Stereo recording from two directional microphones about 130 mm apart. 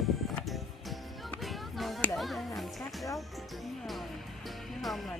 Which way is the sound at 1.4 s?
Centre (ahead or behind).